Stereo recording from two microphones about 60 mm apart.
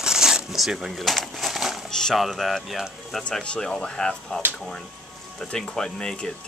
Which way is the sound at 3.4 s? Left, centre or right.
Centre.